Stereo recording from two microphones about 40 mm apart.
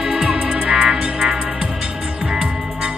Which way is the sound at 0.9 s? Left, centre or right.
Centre.